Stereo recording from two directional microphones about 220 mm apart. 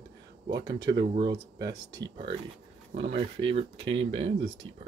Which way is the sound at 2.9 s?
40° right (ahead or behind).